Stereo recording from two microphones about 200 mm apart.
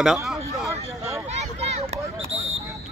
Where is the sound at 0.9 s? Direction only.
15° right (ahead or behind).